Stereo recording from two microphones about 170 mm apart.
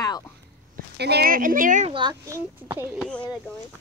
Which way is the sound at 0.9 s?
75° right (ahead or behind).